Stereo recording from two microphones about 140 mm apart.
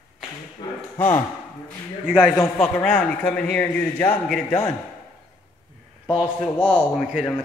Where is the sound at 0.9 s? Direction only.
15° left (ahead or behind).